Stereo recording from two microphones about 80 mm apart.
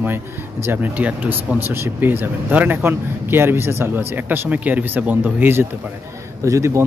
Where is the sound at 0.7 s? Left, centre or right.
Right.